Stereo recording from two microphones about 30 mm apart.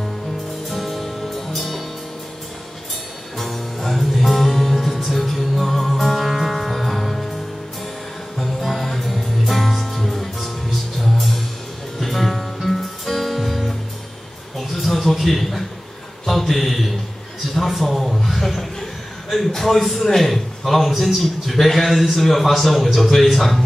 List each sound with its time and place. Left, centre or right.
0.7 s music: centre
3.3 s music: centre
8.4 s music: centre
12.0 s music: centre
14.6 s a sound: centre
16.3 s mantra: centre
17.6 s a sound: centre
20.1 s a man's voice: centre